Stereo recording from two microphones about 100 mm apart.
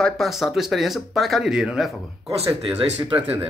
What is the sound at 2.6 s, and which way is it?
Speech, 80° right.